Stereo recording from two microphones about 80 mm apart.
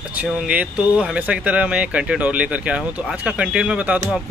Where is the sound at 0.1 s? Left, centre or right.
Centre.